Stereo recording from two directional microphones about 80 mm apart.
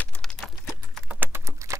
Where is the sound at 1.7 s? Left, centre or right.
Right.